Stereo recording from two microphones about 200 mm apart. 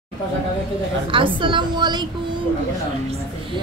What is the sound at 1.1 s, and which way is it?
Speech, 25° right (ahead or behind).